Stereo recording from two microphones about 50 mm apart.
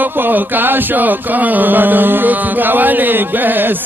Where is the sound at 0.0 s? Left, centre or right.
Right.